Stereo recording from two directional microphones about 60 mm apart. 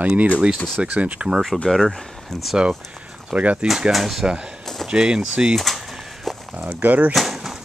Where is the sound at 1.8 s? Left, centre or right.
Centre.